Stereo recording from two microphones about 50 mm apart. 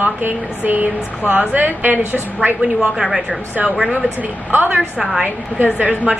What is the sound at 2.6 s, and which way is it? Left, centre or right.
Speech, centre.